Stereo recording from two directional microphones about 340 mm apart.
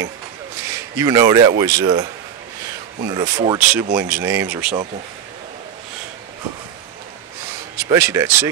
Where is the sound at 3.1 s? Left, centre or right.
Centre.